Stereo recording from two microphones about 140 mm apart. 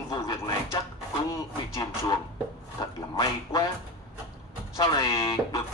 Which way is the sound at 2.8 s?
30° left (ahead or behind).